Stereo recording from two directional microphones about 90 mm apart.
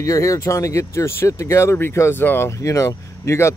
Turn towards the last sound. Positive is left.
turn(degrees=35)  # may be behind; listen again after turning